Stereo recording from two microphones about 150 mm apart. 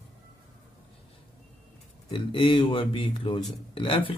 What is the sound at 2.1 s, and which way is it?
Speech, 35° left (ahead or behind).